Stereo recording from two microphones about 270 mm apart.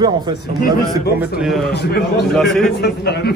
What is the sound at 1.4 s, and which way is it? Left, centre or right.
Speech, centre.